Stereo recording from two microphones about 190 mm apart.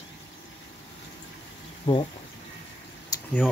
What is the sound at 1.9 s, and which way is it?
Speech, 25° left (ahead or behind).